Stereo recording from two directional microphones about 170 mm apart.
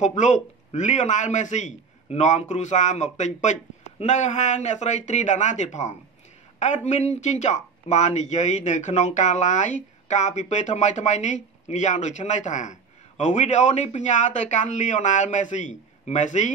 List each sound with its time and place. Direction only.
0.0 s speech: 45° left (ahead or behind)